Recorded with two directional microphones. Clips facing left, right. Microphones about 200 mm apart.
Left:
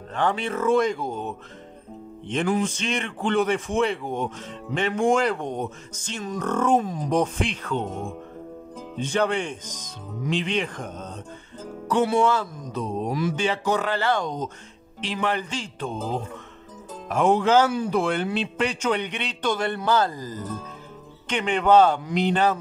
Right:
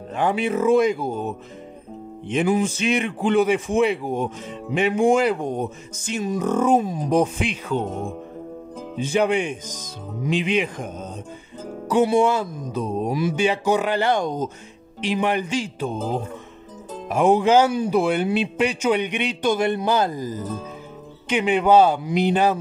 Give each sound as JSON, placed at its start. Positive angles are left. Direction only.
{"t": 0.1, "sound": "a man's voice", "side_deg": -10}
{"t": 7.8, "sound": "speech", "side_deg": -35}
{"t": 8.9, "sound": "a man's voice", "side_deg": -10}
{"t": 17.1, "sound": "a man's voice", "side_deg": -10}